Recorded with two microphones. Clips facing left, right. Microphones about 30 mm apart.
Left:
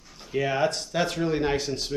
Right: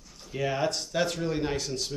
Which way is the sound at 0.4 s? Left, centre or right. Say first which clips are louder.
Left 4 dB; centre.